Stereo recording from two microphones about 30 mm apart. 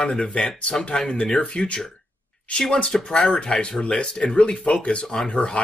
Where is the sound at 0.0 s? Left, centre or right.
Left.